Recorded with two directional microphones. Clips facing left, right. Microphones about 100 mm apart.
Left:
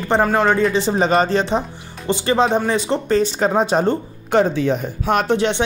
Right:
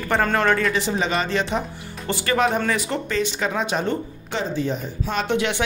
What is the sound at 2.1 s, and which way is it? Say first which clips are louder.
Speech: left 4 dB; 20° left (ahead or behind).